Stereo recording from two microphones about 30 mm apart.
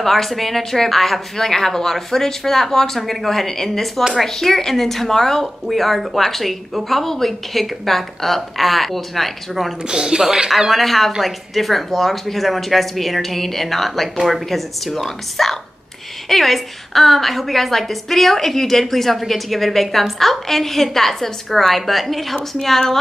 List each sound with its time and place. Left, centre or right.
0.0 s speech: centre
5.7 s a woman's voice: centre
9.8 s a woman's voice: right
10.7 s a woman's voice: centre
15.4 s a woman's voice: centre